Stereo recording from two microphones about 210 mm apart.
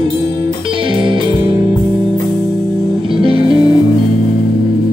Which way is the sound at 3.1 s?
25° right (ahead or behind).